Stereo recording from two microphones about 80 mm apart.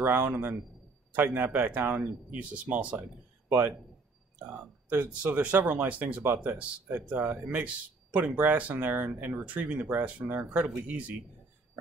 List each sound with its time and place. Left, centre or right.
0.0 s speech: right
4.9 s speech: centre